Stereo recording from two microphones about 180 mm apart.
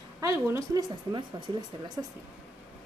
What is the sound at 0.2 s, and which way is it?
Speech, 15° right (ahead or behind).